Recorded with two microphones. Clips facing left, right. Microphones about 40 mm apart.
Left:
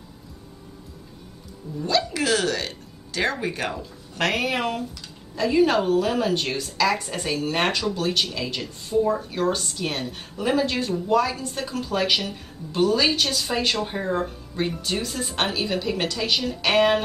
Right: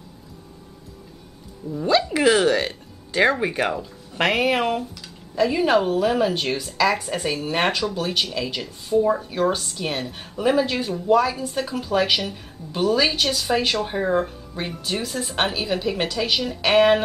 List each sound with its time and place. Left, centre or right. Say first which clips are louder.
1.8 s a woman's voice: right 4 dB; centre